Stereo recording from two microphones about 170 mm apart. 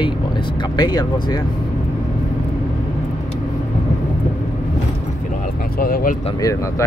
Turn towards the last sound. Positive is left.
turn(degrees=60)  # may be behind; listen again after turning